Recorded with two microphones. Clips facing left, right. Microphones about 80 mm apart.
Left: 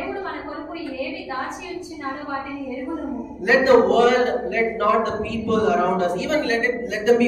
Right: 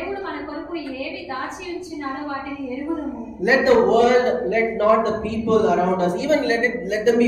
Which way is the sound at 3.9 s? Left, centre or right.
Centre.